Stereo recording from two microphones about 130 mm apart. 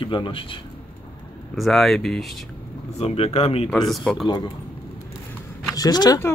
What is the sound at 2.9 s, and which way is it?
Speech, 50° left (ahead or behind).